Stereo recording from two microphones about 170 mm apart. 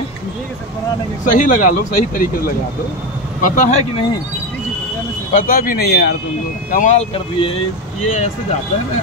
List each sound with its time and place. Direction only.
1.2 s speech: 50° left (ahead or behind)
3.3 s speech: 50° left (ahead or behind)
5.3 s speech: 55° left (ahead or behind)
6.7 s speech: 45° left (ahead or behind)